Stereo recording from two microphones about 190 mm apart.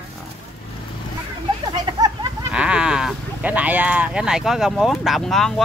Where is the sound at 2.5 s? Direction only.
5° right (ahead or behind).